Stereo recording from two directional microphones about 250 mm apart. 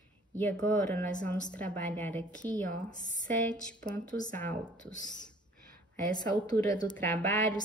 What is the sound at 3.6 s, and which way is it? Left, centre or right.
A woman's voice, centre.